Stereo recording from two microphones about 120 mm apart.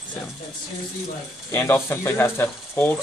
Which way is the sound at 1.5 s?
20° left (ahead or behind).